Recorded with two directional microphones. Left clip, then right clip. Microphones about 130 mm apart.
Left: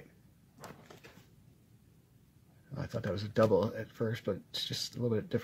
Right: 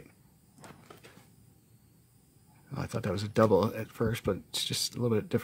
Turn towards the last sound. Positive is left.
turn(degrees=-35)  # may be behind; listen again after turning